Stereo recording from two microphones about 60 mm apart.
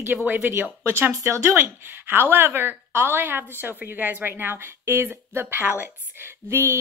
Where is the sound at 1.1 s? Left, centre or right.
Right.